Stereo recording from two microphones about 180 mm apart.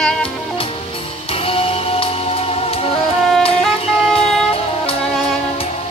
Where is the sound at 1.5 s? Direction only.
30° left (ahead or behind).